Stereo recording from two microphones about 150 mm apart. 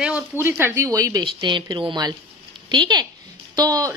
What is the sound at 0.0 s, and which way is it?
A woman's voice, 10° right (ahead or behind).